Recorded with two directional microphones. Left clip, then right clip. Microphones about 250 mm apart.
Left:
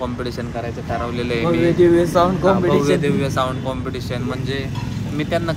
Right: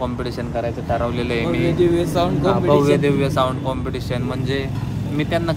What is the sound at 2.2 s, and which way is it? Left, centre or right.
Speech, left.